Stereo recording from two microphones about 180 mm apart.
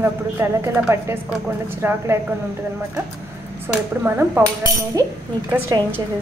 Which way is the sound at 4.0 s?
10° right (ahead or behind).